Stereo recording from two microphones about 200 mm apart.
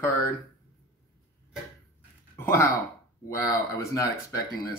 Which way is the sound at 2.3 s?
15° left (ahead or behind).